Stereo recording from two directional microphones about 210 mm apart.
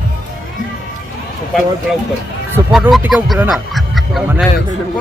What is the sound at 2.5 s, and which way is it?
Speech, 5° right (ahead or behind).